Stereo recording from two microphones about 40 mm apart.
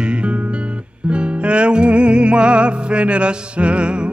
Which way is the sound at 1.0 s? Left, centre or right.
Right.